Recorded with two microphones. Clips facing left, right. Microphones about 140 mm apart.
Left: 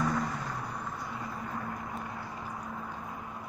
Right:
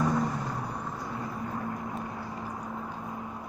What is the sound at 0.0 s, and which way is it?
Vehicle, 15° right (ahead or behind).